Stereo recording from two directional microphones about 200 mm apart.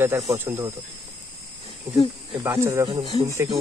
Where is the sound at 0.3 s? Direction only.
10° right (ahead or behind).